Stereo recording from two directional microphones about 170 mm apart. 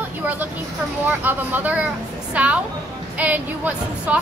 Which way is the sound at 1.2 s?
10° right (ahead or behind).